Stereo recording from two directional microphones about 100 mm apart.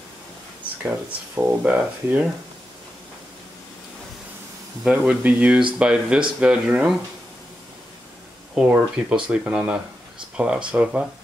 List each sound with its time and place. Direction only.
0.8 s speech: 15° right (ahead or behind)
4.8 s speech: 10° right (ahead or behind)
8.5 s speech: 10° right (ahead or behind)